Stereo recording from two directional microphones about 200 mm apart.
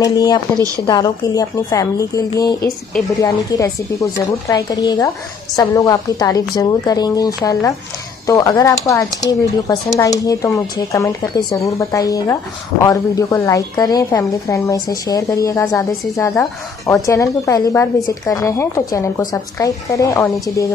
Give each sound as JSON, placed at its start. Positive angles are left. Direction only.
{"t": 0.0, "sound": "speech", "side_deg": 20}